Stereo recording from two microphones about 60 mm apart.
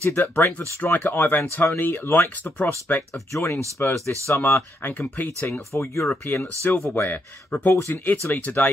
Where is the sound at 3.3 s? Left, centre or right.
Left.